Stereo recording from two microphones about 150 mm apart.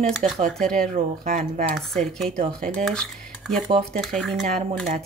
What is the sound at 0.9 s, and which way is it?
Speech, 60° right (ahead or behind).